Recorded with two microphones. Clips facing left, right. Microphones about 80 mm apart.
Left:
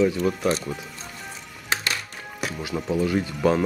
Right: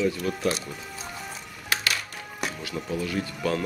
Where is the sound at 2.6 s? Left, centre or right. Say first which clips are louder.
Left 9 dB; centre.